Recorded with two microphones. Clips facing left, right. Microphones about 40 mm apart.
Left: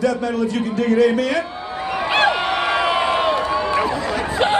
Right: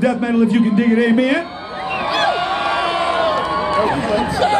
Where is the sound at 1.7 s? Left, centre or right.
Right.